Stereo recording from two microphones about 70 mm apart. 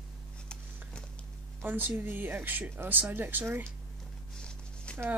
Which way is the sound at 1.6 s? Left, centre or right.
Right.